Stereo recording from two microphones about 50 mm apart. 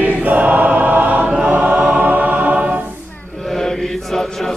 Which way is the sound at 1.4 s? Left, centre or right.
Right.